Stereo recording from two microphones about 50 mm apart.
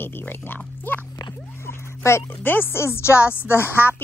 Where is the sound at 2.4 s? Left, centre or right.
Left.